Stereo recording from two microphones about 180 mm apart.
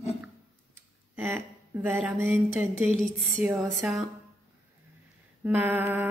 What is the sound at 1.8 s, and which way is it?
A woman's voice, 10° right (ahead or behind).